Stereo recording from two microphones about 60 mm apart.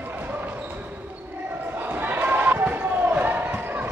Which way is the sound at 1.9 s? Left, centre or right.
Right.